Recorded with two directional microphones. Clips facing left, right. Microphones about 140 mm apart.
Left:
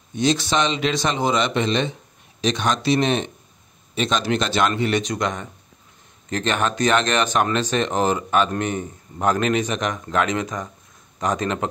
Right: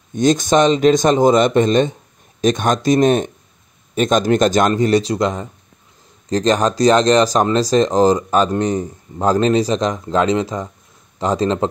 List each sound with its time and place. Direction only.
0.1 s a man's voice: 45° right (ahead or behind); by 11.6 s 30° right (ahead or behind)